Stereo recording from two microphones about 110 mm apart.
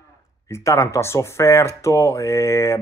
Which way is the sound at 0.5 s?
25° left (ahead or behind).